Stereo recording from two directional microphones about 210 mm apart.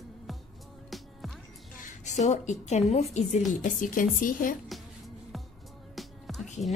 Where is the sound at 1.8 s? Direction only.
35° left (ahead or behind).